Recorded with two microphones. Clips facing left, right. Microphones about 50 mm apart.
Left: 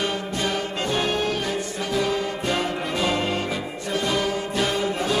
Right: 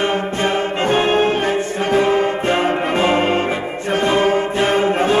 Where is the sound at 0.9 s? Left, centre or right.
Right.